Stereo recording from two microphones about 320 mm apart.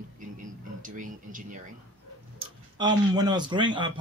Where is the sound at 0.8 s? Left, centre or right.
Right.